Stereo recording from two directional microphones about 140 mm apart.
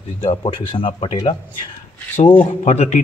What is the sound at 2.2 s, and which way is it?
Speech, 50° left (ahead or behind).